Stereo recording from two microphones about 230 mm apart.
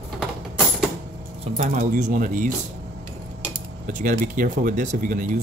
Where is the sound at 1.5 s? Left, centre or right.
Right.